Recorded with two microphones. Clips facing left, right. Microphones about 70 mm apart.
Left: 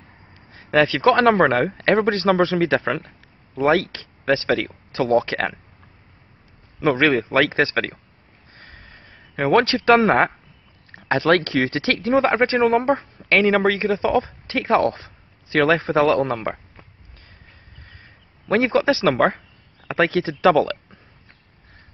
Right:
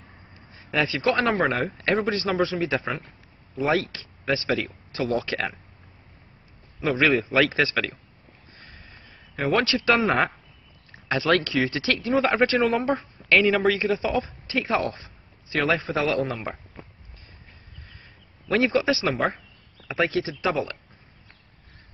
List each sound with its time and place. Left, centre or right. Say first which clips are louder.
0.5 s speech: left 8 dB; left
3.5 s speech: left 5 dB; left
6.8 s speech: left 4 dB; left
8.5 s a sound: left 4 dB; left
10.9 s speech: left 5 dB; left
17.8 s a sound: left 2 dB; left
19.9 s speech: left 5 dB; left